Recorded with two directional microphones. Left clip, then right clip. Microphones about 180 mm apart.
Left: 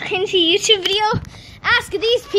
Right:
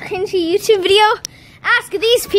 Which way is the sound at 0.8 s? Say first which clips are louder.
Right 7 dB; 70° right (ahead or behind).